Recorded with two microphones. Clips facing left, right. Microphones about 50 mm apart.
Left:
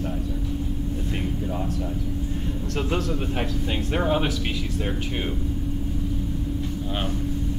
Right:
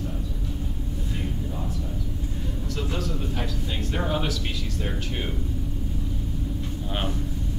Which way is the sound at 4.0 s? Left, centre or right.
Left.